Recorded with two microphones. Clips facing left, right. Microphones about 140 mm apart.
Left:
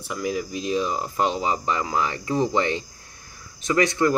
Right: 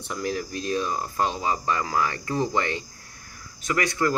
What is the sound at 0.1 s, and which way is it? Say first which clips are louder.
Speech: left 2 dB; 5° left (ahead or behind).